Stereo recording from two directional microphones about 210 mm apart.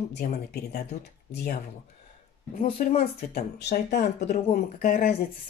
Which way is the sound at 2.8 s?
40° left (ahead or behind).